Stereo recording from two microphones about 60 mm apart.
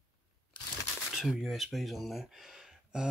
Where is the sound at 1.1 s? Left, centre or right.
Centre.